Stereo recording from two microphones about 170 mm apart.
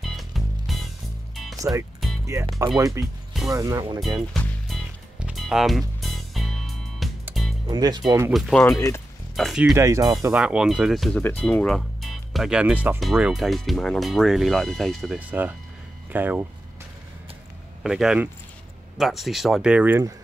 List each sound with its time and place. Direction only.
0.0 s music: centre (ahead or behind)
1.6 s speech: 20° right (ahead or behind)
4.0 s music: centre (ahead or behind)
7.6 s speech: 25° right (ahead or behind)
8.3 s speech: centre (ahead or behind)
8.7 s speech: 20° left (ahead or behind)
9.3 s speech: centre (ahead or behind)
9.8 s speech: 20° right (ahead or behind)
10.2 s speech: 5° right (ahead or behind)
15.1 s speech: 10° right (ahead or behind)
17.8 s speech: 5° right (ahead or behind)